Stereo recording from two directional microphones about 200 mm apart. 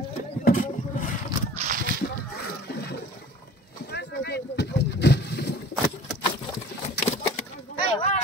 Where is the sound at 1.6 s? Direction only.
45° right (ahead or behind).